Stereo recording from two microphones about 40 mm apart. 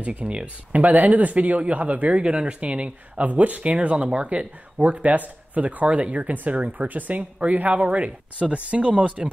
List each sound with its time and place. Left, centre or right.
0.0 s speech: right
0.7 s speech: right
2.2 s speech: right